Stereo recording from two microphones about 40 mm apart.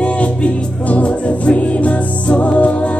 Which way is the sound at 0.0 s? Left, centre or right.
Left.